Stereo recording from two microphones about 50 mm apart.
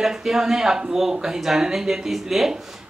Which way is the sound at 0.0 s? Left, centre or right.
Centre.